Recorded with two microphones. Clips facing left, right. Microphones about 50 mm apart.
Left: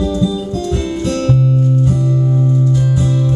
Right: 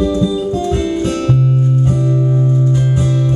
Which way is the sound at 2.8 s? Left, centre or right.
Right.